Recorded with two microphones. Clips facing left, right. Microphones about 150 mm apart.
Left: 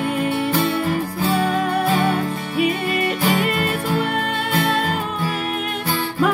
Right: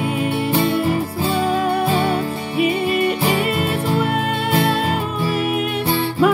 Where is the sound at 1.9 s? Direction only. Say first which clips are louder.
Right 1 dB; 30° right (ahead or behind).